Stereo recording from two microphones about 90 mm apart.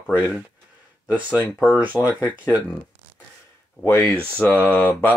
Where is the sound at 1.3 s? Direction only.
10° left (ahead or behind).